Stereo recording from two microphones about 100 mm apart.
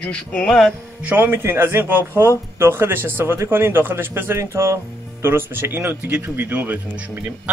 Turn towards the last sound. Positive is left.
turn(degrees=-15)  # may be behind; listen again after turning